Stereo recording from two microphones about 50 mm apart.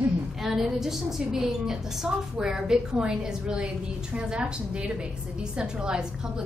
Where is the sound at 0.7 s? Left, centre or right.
Centre.